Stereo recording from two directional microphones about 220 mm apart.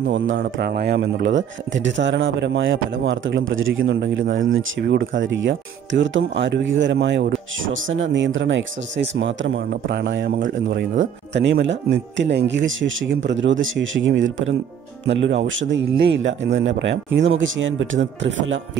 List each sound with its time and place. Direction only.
0.4 s speech: 45° right (ahead or behind)